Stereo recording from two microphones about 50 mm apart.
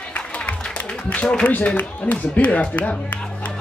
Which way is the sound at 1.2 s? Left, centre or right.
Centre.